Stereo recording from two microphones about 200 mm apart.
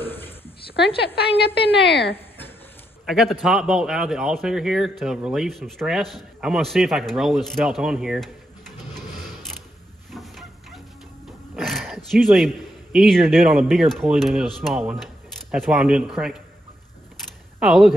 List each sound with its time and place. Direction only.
0.0 s a sound: 10° left (ahead or behind)
1.4 s a woman's voice: 55° left (ahead or behind)
3.1 s a man's voice: centre (ahead or behind)
10.1 s a sound: centre (ahead or behind)
11.2 s a man's voice: centre (ahead or behind)
17.6 s speech: centre (ahead or behind)